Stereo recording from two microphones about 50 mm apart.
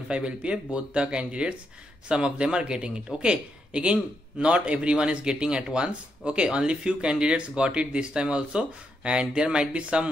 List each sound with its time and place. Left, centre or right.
0.1 s a man's voice: right